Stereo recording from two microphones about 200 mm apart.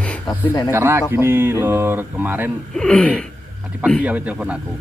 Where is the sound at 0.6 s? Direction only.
10° right (ahead or behind).